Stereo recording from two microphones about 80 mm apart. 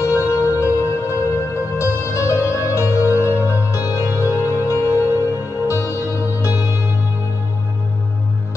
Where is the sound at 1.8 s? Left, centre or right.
Left.